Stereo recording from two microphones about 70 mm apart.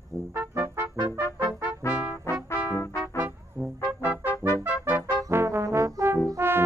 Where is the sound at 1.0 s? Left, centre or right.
Left.